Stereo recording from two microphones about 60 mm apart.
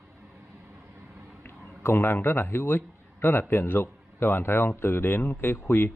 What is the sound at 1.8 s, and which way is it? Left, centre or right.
A man's voice, left.